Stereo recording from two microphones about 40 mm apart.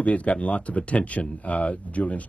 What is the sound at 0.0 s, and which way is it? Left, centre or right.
Speech, left.